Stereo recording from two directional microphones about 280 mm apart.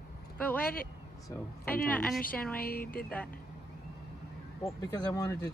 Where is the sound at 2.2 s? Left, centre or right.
Left.